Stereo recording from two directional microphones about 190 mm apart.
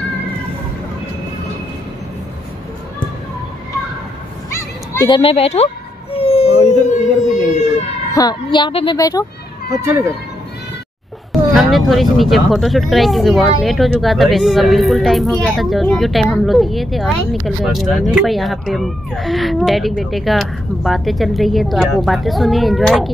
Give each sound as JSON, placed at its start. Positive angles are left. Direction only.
{"t": 4.6, "sound": "children playing", "side_deg": 15}
{"t": 5.1, "sound": "speech", "side_deg": 30}
{"t": 6.1, "sound": "a sound", "side_deg": 30}
{"t": 8.1, "sound": "a woman's voice", "side_deg": 20}
{"t": 9.7, "sound": "speech", "side_deg": -15}
{"t": 11.5, "sound": "speech", "side_deg": 0}